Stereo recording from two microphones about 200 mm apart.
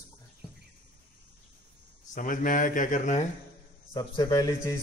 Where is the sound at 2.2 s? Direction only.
40° left (ahead or behind).